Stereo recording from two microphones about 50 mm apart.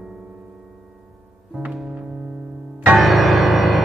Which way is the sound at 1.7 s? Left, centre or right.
Centre.